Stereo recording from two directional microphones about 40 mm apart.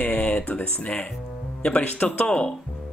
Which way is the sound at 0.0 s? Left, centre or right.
Left.